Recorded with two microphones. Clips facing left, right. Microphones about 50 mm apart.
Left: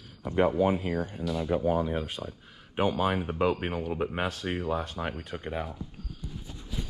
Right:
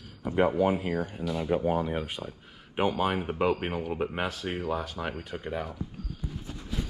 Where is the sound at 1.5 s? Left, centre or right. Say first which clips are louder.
Left 1 dB; right.